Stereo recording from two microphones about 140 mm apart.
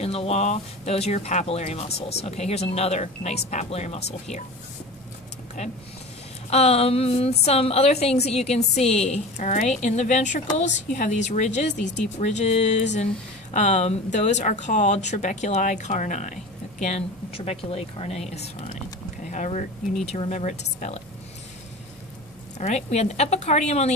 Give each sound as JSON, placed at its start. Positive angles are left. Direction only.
{"t": 0.0, "sound": "speech", "side_deg": 45}
{"t": 5.6, "sound": "speech", "side_deg": 50}
{"t": 16.8, "sound": "speech", "side_deg": 45}
{"t": 22.6, "sound": "speech", "side_deg": 55}